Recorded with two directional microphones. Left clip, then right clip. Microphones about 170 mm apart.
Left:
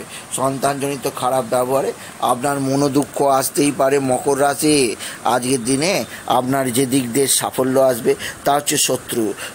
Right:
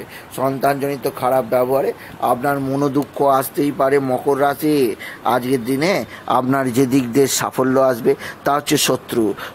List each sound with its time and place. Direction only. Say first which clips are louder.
0.4 s speech: right 1 dB; 10° right (ahead or behind)
2.4 s speech: even; centre (ahead or behind)
6.2 s speech: even; 15° right (ahead or behind)